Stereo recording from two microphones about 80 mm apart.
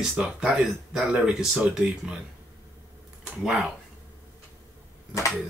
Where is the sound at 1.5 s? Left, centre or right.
Centre.